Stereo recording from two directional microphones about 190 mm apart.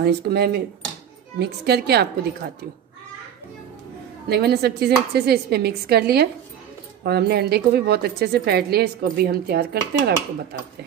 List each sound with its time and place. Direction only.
0.0 s a woman's voice: 55° right (ahead or behind)
4.3 s a woman's voice: 60° right (ahead or behind)